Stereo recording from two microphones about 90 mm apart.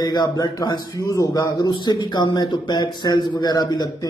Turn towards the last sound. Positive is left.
turn(degrees=50)  # may be behind; listen again after turning